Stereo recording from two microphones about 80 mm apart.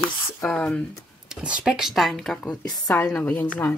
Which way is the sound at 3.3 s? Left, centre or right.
Left.